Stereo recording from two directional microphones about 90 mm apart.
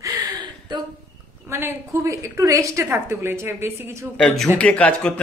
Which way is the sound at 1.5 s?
30° right (ahead or behind).